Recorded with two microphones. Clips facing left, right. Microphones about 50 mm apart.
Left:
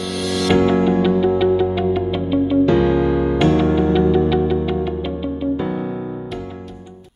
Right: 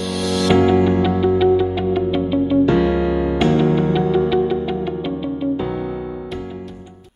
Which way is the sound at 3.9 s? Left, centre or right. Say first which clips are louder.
Left 1 dB; centre.